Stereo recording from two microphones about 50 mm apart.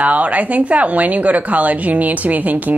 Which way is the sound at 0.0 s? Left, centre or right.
Right.